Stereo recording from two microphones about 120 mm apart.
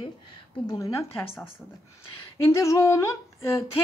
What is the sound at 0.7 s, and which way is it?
A woman's voice, 30° left (ahead or behind).